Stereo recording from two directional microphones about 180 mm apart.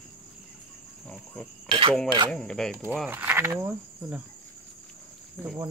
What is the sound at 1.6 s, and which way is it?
Cutlery, 30° right (ahead or behind).